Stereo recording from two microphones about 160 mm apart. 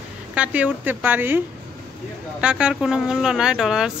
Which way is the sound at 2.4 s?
5° right (ahead or behind).